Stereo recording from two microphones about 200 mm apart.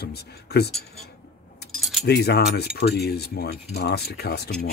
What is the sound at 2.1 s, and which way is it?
Speech, 55° left (ahead or behind).